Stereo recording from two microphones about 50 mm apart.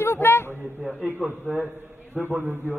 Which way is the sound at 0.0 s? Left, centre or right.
Left.